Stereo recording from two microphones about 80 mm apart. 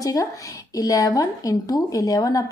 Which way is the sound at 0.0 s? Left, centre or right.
Left.